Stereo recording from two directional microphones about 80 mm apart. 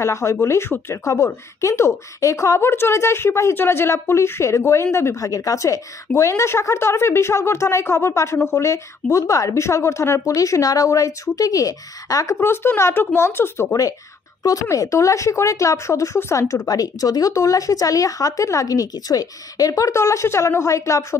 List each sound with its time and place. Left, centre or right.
0.0 s a woman's voice: left
5.2 s a woman's voice: left
12.4 s speech: left
14.4 s a woman's voice: left
16.6 s speech: left